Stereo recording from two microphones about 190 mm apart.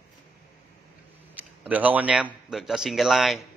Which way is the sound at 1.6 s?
10° right (ahead or behind).